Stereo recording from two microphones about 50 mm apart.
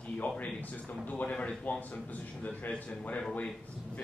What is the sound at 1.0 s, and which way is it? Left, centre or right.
Speech, left.